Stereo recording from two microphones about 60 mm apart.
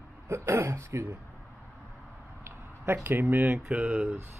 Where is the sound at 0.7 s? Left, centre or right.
Right.